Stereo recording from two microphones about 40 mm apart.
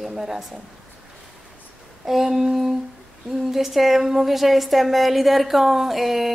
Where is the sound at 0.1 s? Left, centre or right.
Centre.